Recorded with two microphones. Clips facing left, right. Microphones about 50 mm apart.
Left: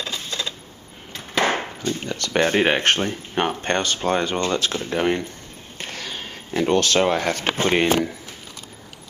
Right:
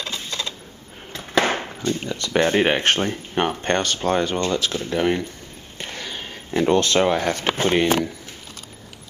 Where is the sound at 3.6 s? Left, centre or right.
Centre.